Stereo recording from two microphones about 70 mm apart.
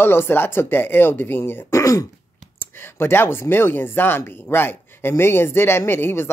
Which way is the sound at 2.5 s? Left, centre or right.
Left.